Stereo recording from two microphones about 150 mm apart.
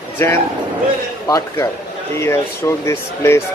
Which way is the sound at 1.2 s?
20° left (ahead or behind).